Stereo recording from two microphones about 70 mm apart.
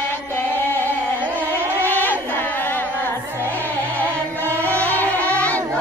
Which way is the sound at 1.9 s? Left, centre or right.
Left.